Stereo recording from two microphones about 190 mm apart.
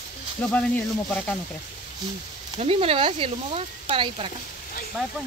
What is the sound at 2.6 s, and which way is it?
Speech, 30° right (ahead or behind).